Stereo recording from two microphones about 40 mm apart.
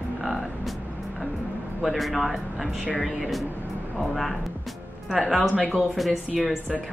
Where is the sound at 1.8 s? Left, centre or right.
Centre.